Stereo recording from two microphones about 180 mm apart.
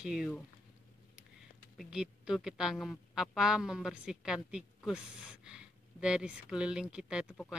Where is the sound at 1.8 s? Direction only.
5° right (ahead or behind).